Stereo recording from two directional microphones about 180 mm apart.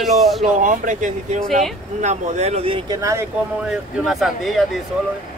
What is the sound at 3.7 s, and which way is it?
Speech, centre (ahead or behind).